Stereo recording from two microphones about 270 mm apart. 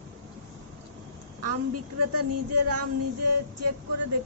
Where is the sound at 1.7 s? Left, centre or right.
Right.